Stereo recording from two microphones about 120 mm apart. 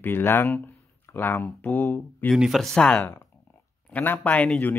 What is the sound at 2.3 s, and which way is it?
Speech, 5° right (ahead or behind).